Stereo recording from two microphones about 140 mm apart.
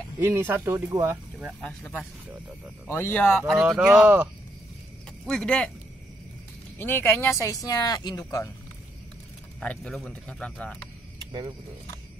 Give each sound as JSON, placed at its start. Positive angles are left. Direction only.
{"t": 0.2, "sound": "speech", "side_deg": -15}
{"t": 1.6, "sound": "speech", "side_deg": 10}
{"t": 5.2, "sound": "speech", "side_deg": 5}
{"t": 6.8, "sound": "speech", "side_deg": 15}
{"t": 9.6, "sound": "speech", "side_deg": 5}